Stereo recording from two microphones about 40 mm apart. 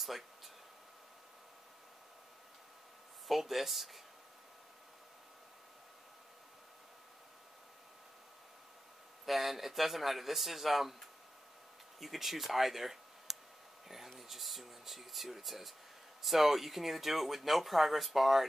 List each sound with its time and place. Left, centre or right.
3.3 s speech: centre
9.2 s speech: centre
12.0 s speech: centre